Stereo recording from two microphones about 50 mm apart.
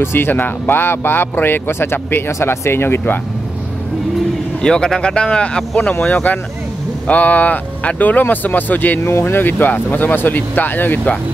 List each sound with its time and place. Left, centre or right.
0.0 s speech: left
4.6 s speech: centre
6.0 s speech: left
9.0 s speech: left